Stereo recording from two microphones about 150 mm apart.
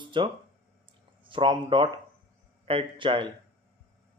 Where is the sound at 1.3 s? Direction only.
35° right (ahead or behind).